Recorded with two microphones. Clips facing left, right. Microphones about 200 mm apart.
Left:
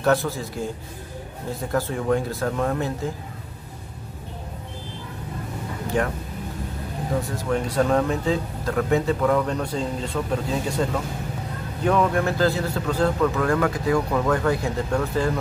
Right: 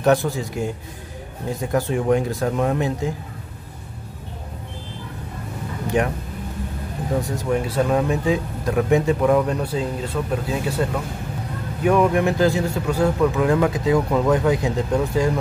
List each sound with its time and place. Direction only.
0.0 s a man's voice: 15° right (ahead or behind)
1.7 s a man's voice: 15° right (ahead or behind)
6.0 s a man's voice: 15° right (ahead or behind)
7.2 s a man's voice: 15° right (ahead or behind)
7.6 s a man's voice: 5° right (ahead or behind)